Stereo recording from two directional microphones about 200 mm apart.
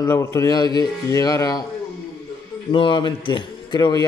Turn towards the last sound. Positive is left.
turn(degrees=20)  # may be behind; listen again after turning